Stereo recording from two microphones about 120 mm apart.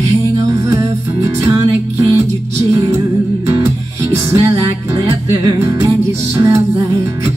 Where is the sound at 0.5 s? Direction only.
25° right (ahead or behind).